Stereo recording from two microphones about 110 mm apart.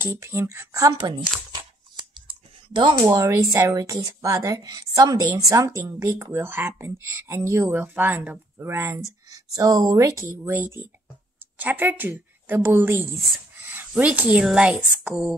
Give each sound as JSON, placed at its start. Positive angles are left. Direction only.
{"t": 0.0, "sound": "speech", "side_deg": -25}
{"t": 0.9, "sound": "tearing", "side_deg": -40}
{"t": 3.0, "sound": "a woman's voice", "side_deg": -30}